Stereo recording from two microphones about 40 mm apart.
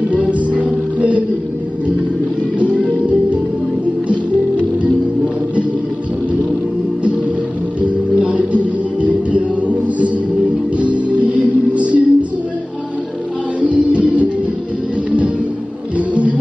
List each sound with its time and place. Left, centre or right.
0.3 s music: right
2.6 s music: right
7.8 s music: right
13.6 s music: right